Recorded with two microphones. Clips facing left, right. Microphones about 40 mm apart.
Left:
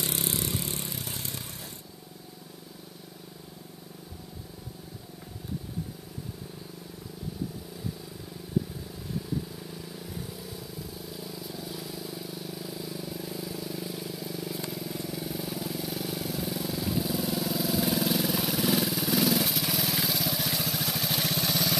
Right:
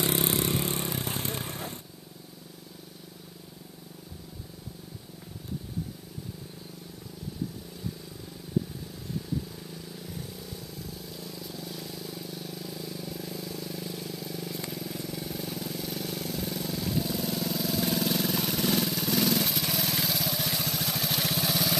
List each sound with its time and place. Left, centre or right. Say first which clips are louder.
0.0 s vehicle: right 5 dB; right
10.1 s vehicle: left 1 dB; centre